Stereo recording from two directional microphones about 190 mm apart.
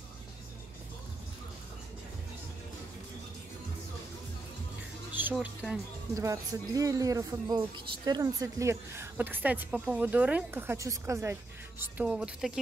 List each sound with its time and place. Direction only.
5.3 s speech: 5° right (ahead or behind)
6.1 s speech: 15° right (ahead or behind)
11.8 s speech: 5° right (ahead or behind)